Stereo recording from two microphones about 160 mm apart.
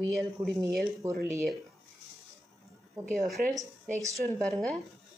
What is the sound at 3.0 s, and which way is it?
Speech, centre (ahead or behind).